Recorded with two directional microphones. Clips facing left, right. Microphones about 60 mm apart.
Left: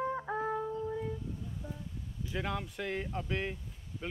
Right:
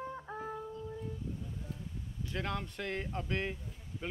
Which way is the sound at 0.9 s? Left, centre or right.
Left.